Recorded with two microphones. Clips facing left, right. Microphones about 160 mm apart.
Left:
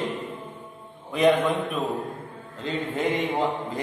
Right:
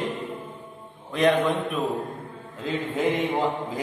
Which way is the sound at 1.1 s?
Centre (ahead or behind).